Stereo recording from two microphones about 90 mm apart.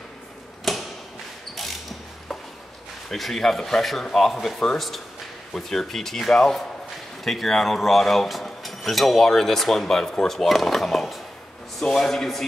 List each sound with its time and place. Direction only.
0.7 s mechanisms: centre (ahead or behind)
3.1 s speech: centre (ahead or behind)